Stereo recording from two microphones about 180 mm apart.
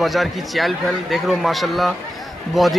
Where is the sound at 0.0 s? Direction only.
Centre (ahead or behind).